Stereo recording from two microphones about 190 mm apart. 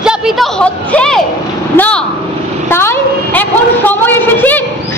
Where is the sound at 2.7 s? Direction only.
15° left (ahead or behind).